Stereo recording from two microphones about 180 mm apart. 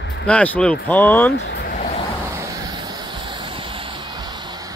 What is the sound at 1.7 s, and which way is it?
Vehicle, 40° left (ahead or behind).